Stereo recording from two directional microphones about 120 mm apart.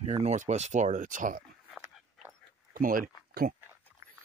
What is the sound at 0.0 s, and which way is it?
Speech, 65° right (ahead or behind).